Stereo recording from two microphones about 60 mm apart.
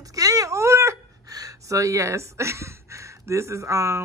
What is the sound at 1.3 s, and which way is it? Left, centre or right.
A woman's voice, right.